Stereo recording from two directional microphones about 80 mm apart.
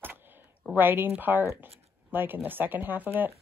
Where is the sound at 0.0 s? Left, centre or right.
Right.